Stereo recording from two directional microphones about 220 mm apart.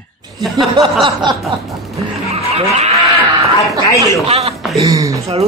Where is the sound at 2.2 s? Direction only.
30° right (ahead or behind).